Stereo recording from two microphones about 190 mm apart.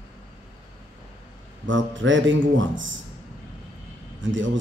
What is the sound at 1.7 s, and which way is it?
A man's voice, 85° right.